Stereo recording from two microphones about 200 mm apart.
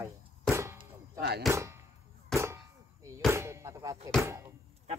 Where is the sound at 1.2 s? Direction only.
55° right (ahead or behind).